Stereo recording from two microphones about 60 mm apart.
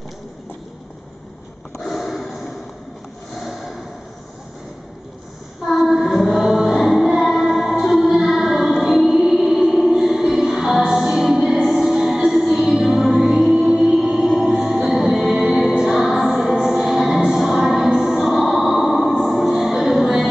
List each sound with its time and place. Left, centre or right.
1.9 s gasp: centre
5.7 s child singing: centre
6.4 s music: centre